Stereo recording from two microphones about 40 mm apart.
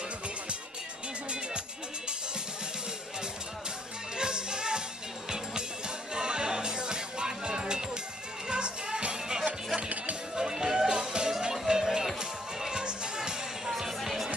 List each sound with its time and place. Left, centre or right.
4.2 s music: centre
6.1 s music: centre
9.8 s music: right
10.3 s music: centre
12.6 s music: centre